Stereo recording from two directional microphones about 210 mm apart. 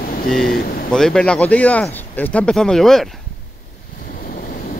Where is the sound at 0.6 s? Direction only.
45° left (ahead or behind).